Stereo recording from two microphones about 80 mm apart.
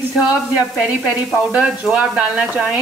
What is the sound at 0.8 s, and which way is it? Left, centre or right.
Speech, centre.